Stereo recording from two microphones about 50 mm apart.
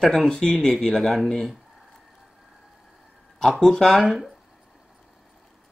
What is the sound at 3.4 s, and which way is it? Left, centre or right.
Speech, centre.